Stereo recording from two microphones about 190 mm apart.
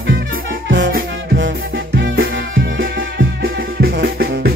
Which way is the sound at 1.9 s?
70° right (ahead or behind).